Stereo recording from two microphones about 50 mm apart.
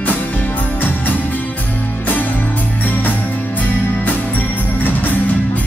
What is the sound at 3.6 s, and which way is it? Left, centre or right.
Music, left.